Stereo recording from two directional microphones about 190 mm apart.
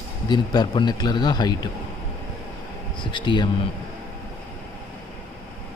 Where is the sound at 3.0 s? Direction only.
25° left (ahead or behind).